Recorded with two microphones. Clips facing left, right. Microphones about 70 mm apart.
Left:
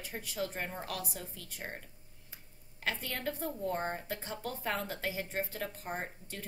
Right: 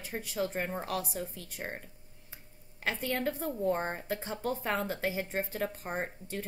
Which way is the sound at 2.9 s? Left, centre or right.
Right.